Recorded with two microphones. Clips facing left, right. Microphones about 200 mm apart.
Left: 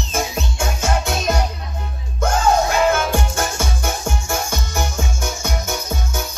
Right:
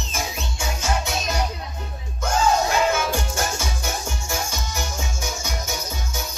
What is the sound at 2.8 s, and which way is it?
Music, 55° left (ahead or behind).